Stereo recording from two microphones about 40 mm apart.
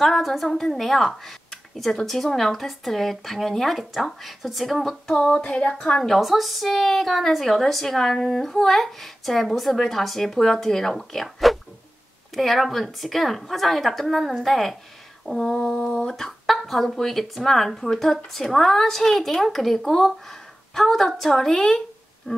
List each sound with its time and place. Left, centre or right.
0.0 s a woman's voice: centre
5.1 s speech: left
6.0 s a woman's voice: centre
16.2 s a woman's voice: centre